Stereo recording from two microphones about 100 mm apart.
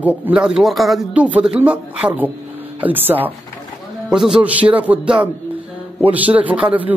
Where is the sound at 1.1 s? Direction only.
15° right (ahead or behind).